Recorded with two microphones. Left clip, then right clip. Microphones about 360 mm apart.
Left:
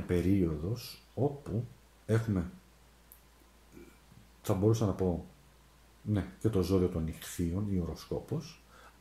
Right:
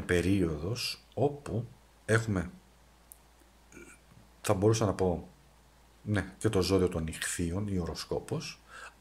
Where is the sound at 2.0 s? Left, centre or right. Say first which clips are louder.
Right 4 dB; right.